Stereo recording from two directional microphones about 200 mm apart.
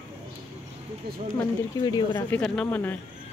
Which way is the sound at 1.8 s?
20° left (ahead or behind).